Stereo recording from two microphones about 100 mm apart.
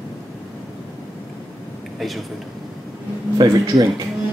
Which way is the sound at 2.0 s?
Centre (ahead or behind).